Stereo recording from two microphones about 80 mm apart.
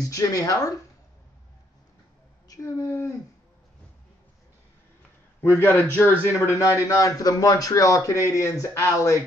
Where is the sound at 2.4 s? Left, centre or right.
Left.